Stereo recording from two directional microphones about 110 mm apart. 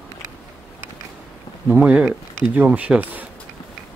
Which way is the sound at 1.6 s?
10° right (ahead or behind).